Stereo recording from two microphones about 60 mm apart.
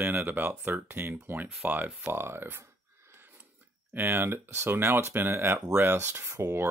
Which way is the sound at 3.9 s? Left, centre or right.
Right.